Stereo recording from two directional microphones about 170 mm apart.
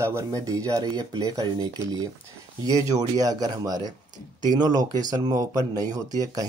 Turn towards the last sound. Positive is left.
turn(degrees=-20)  # may be behind; listen again after turning